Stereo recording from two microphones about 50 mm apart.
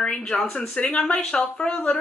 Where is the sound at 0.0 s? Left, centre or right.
Centre.